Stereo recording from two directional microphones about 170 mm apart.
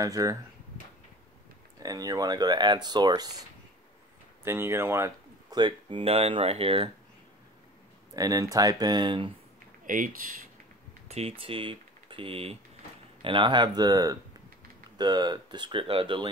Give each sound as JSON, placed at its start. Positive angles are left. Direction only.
{"t": 0.0, "sound": "speech", "side_deg": -20}
{"t": 1.8, "sound": "speech", "side_deg": -20}
{"t": 4.5, "sound": "speech", "side_deg": -15}
{"t": 8.1, "sound": "speech", "side_deg": -20}
{"t": 9.8, "sound": "speech", "side_deg": -50}
{"t": 11.1, "sound": "speech", "side_deg": -35}